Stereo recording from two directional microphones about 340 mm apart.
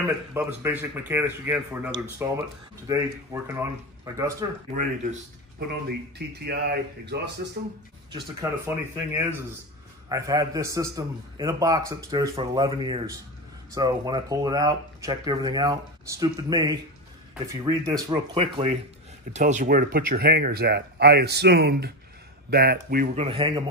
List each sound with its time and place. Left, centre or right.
0.0 s speech: centre
5.9 s speech: right
8.1 s speech: centre